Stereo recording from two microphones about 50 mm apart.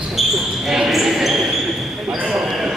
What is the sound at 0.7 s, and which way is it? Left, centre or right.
Basketball bounce, centre.